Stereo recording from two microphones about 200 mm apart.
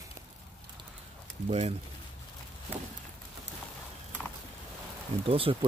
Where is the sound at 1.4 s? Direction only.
30° right (ahead or behind).